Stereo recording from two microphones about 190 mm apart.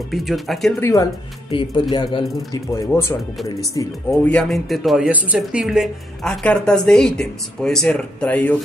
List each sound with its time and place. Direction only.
0.1 s speech: centre (ahead or behind)
0.7 s speech: 15° left (ahead or behind)
1.5 s speech: 25° left (ahead or behind)
2.9 s speech: 15° left (ahead or behind)
4.3 s speech: 5° left (ahead or behind)